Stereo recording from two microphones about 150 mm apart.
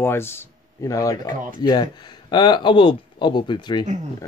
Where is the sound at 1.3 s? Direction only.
65° right (ahead or behind).